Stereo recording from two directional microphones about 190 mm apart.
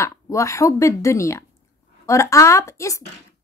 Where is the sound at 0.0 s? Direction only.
15° left (ahead or behind).